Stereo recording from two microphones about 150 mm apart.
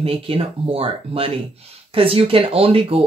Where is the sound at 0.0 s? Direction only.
40° right (ahead or behind).